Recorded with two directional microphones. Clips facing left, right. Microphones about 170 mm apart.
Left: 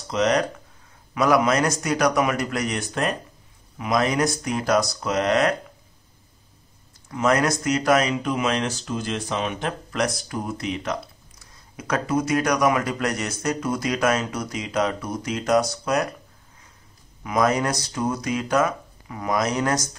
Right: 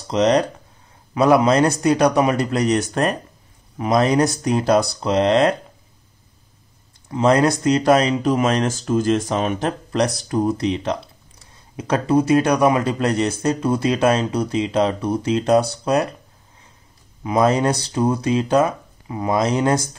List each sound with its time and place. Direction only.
0.1 s a man's voice: 30° right (ahead or behind)
3.7 s speech: 35° right (ahead or behind)
7.1 s a man's voice: 30° right (ahead or behind)
17.2 s a man's voice: 30° right (ahead or behind)